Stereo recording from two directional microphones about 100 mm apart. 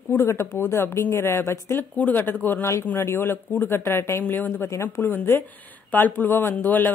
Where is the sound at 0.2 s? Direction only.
25° left (ahead or behind).